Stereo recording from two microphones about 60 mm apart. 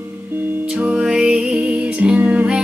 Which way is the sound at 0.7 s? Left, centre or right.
Centre.